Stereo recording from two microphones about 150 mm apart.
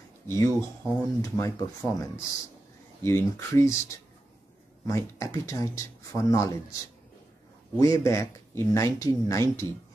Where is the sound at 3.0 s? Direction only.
20° left (ahead or behind).